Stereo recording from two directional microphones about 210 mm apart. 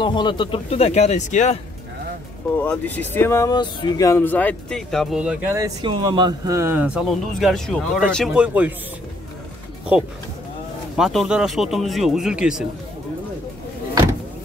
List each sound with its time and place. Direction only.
0.0 s speech: 20° left (ahead or behind)
2.6 s speech: 5° left (ahead or behind)
9.9 s speech: 5° right (ahead or behind)